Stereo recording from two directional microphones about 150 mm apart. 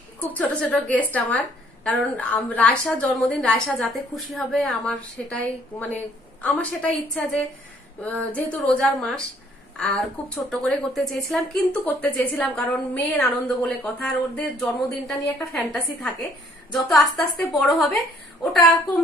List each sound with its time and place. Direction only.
0.2 s a woman's voice: 10° left (ahead or behind)